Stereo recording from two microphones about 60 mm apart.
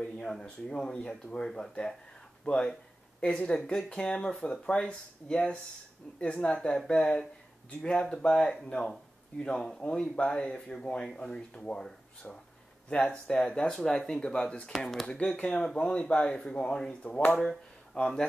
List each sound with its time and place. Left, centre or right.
0.0 s speech: centre
17.3 s speech: centre